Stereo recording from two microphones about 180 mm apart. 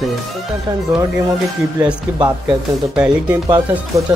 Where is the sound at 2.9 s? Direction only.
5° right (ahead or behind).